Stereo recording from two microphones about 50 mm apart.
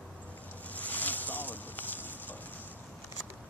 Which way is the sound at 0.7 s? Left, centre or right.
Left.